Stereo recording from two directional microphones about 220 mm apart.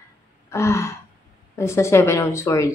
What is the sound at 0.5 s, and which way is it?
Gasp, 10° left (ahead or behind).